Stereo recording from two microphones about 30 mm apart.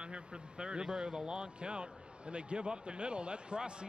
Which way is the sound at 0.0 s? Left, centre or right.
Right.